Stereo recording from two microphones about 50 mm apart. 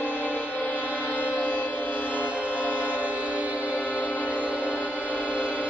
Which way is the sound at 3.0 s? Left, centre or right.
Right.